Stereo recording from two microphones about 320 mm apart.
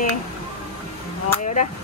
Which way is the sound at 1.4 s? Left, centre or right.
Left.